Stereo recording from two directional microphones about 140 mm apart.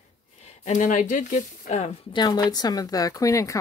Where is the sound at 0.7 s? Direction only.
60° left (ahead or behind).